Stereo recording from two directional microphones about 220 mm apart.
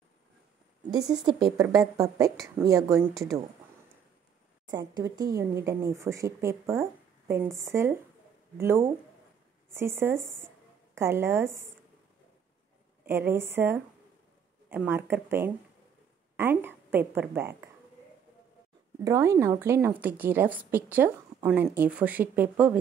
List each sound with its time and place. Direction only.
1.0 s a woman's voice: 20° right (ahead or behind)
4.6 s a woman's voice: 20° right (ahead or behind)
13.0 s a woman's voice: 10° right (ahead or behind)
19.0 s a woman's voice: 15° right (ahead or behind)